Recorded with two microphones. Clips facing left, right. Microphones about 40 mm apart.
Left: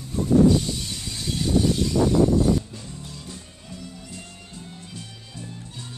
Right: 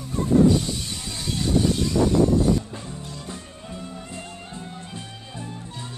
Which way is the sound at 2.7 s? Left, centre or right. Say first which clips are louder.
Right 4 dB; right.